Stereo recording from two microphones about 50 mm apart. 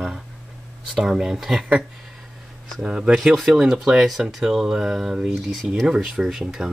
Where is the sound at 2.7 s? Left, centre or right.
Centre.